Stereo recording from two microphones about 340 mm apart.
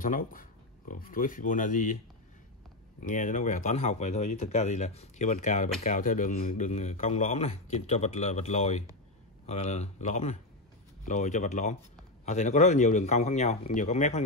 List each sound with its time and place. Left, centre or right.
0.0 s speech: left
3.0 s a man's voice: left